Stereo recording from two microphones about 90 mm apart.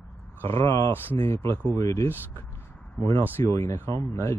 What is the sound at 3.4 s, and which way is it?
Speech, 35° left (ahead or behind).